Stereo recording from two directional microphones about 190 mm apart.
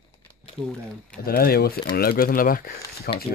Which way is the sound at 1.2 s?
50° left (ahead or behind).